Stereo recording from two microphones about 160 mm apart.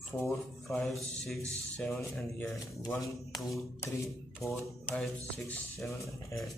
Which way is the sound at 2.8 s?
20° left (ahead or behind).